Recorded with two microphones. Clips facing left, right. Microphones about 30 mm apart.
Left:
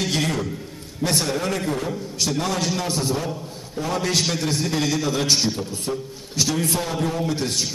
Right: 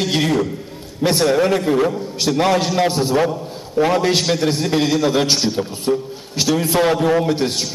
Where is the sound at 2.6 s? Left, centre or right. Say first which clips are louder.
Right 6 dB; right.